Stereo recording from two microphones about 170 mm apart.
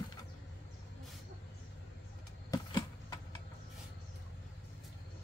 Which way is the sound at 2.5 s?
25° left (ahead or behind).